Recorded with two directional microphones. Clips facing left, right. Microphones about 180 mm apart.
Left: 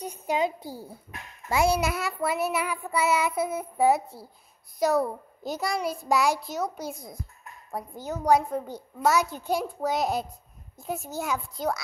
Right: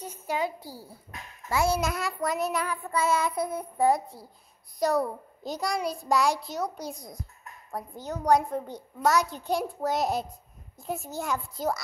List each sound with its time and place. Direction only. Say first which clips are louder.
0.0 s a child's voice: left 3 dB; 15° left (ahead or behind); by 11.8 s centre (ahead or behind)